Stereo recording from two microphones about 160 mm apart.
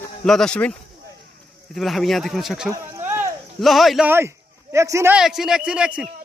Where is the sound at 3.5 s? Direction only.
Centre (ahead or behind).